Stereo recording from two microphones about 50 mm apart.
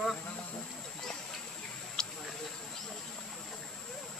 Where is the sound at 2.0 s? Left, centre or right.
Centre.